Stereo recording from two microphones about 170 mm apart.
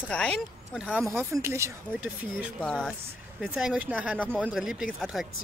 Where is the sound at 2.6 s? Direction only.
5° left (ahead or behind).